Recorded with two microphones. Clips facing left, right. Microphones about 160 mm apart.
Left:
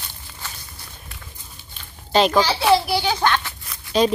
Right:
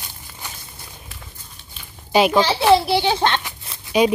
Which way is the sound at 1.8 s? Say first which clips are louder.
Right 1 dB; 10° right (ahead or behind).